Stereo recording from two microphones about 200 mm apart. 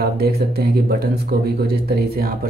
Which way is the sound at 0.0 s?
50° right (ahead or behind).